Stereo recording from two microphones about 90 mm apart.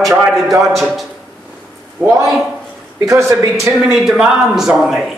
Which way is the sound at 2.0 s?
20° right (ahead or behind).